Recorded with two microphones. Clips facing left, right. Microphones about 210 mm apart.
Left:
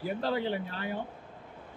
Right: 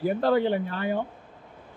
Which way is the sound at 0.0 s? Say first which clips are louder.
Right 8 dB; 55° right (ahead or behind).